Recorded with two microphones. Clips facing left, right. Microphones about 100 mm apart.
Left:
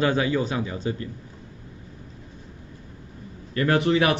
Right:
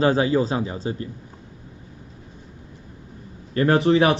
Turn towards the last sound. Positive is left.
turn(degrees=-30)  # may be behind; listen again after turning